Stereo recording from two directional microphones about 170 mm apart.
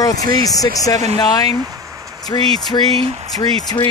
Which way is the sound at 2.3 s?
20° left (ahead or behind).